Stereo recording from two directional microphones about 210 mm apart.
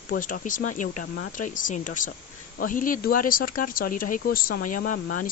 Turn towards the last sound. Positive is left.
turn(degrees=40)  # may be behind; listen again after turning